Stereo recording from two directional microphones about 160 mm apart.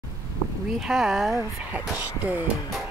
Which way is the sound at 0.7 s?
5° right (ahead or behind).